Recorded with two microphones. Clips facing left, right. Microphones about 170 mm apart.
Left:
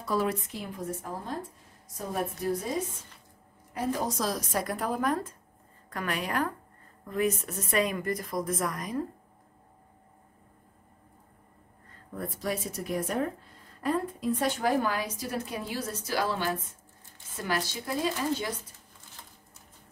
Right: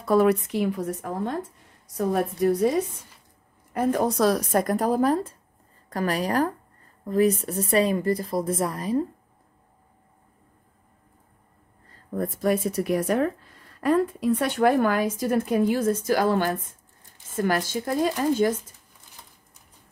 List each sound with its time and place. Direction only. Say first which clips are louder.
0.0 s speech: right 9 dB; 55° right (ahead or behind)
3.7 s speech: right 7 dB; 55° right (ahead or behind); by 9.0 s 30° right (ahead or behind)
12.1 s speech: right 9 dB; 50° right (ahead or behind)